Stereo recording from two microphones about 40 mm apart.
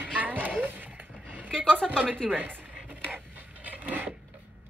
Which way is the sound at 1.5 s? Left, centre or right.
Left.